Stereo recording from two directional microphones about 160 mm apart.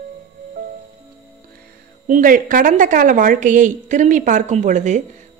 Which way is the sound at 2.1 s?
55° right (ahead or behind).